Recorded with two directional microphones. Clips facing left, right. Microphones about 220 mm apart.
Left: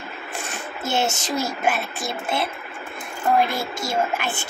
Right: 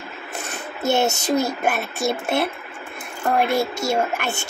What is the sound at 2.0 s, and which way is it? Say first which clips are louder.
A woman's voice: right 5 dB; 70° right (ahead or behind).